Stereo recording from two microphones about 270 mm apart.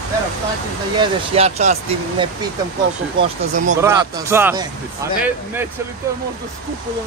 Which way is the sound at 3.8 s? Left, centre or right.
Centre.